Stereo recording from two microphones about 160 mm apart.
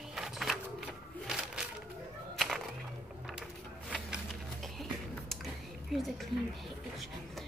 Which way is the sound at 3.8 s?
5° right (ahead or behind).